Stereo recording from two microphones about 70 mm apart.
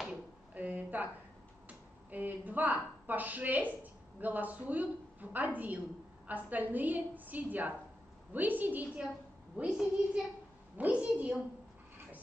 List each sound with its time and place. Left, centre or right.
0.1 s a sound: right
1.7 s a woman's voice: right
9.6 s a child's voice: centre